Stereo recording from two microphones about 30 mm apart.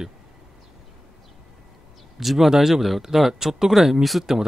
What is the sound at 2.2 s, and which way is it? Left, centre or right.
Speech, centre.